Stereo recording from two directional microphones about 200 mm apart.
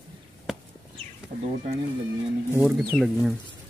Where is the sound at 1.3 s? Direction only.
40° right (ahead or behind).